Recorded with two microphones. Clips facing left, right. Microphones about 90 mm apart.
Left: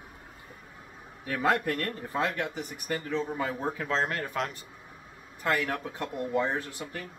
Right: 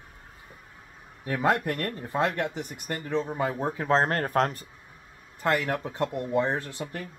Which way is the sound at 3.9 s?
45° right (ahead or behind).